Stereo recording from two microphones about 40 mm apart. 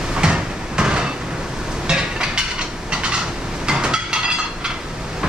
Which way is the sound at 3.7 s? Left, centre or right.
Right.